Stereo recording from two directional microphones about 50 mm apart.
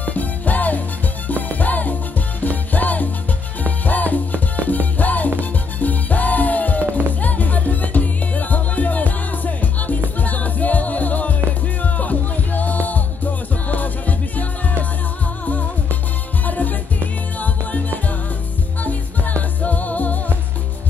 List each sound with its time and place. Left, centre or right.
0.0 s music: left
16.4 s music: left